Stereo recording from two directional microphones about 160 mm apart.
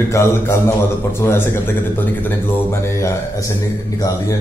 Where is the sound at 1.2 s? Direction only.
15° left (ahead or behind).